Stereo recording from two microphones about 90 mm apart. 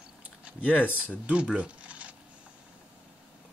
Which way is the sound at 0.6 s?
20° left (ahead or behind).